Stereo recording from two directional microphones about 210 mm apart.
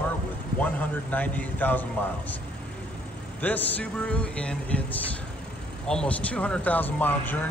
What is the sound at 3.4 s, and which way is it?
A man's voice, 5° left (ahead or behind).